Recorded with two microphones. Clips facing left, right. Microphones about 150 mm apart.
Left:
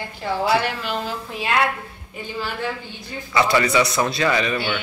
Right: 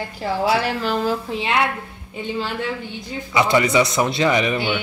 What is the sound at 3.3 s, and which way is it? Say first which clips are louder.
Speech: right 1 dB; 20° right (ahead or behind).